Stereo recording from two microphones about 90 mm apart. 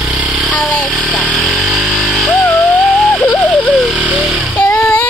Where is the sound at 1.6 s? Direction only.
5° right (ahead or behind).